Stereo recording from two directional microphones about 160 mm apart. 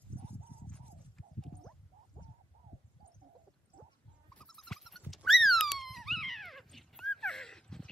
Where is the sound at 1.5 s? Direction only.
5° left (ahead or behind).